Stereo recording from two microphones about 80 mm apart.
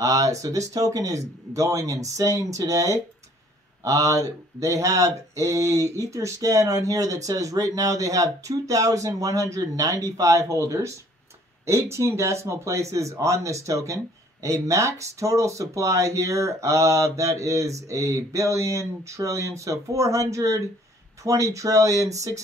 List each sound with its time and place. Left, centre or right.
0.0 s speech: right